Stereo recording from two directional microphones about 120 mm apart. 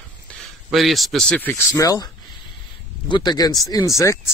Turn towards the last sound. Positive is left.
turn(degrees=25)  # may be behind; listen again after turning